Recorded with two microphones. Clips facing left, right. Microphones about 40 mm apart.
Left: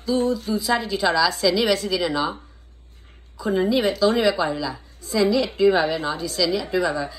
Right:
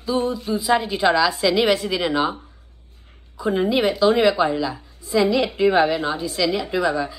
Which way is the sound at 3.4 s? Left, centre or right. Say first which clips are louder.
Right 1 dB; right.